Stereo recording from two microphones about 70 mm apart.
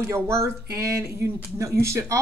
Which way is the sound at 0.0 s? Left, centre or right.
Right.